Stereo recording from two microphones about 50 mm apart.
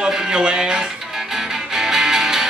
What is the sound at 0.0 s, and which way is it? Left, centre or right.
Music, centre.